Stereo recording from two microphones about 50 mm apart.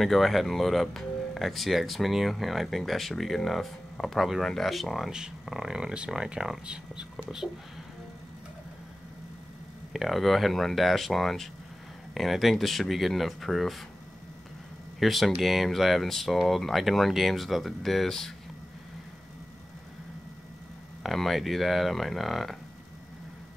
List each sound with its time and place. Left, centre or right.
0.0 s speech: centre
9.9 s speech: centre
15.0 s speech: centre
21.0 s speech: centre